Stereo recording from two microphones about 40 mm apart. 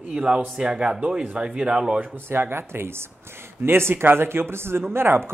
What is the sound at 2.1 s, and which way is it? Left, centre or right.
Speech, right.